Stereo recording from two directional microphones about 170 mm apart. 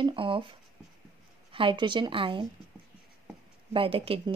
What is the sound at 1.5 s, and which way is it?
Speech, 30° right (ahead or behind).